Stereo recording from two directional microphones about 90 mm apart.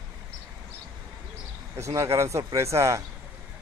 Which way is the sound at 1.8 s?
35° right (ahead or behind).